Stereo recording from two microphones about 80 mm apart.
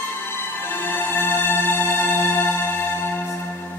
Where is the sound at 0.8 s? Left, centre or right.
Left.